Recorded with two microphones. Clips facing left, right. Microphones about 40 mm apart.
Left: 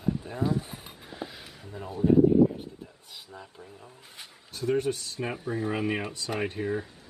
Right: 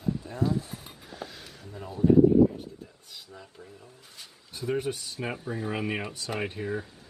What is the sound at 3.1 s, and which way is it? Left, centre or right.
Speech, centre.